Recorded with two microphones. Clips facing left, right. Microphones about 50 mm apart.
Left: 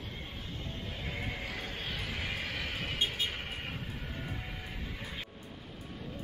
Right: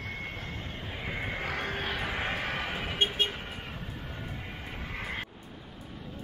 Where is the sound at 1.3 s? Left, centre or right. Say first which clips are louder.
Right 7 dB; right.